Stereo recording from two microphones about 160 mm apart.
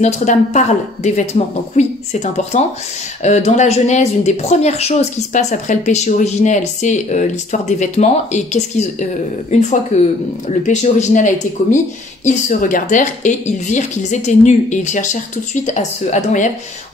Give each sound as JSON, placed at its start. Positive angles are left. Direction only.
{"t": 0.0, "sound": "speech", "side_deg": 45}